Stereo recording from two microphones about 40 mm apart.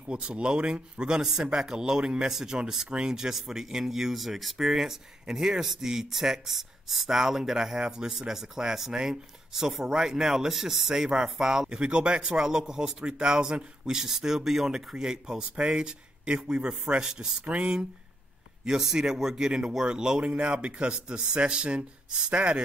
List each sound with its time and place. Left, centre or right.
0.0 s speech: right
11.7 s speech: right
17.0 s speech: centre
18.7 s speech: centre